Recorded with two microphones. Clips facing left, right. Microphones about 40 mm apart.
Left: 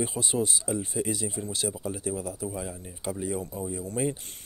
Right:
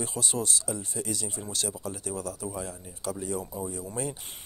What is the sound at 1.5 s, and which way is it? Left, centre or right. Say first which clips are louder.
Speech: left 3 dB; centre.